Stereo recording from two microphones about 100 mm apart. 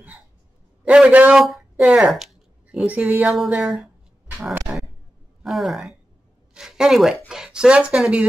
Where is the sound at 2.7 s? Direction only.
15° right (ahead or behind).